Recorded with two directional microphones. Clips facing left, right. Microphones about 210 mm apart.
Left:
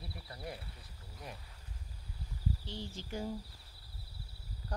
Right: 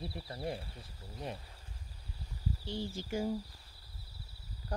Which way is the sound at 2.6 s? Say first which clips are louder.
Right 5 dB; 10° right (ahead or behind).